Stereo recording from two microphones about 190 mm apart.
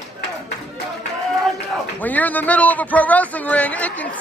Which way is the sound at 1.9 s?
10° left (ahead or behind).